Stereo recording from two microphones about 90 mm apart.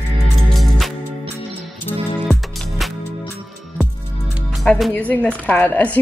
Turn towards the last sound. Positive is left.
turn(degrees=20)  # may be behind; listen again after turning